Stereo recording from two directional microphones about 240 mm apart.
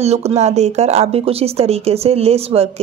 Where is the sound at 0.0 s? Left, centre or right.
Right.